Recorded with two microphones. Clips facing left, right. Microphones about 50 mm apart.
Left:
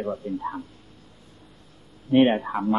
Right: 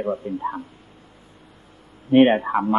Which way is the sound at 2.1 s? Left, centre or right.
Right.